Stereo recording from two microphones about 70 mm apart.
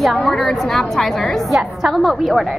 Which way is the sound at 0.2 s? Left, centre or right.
Centre.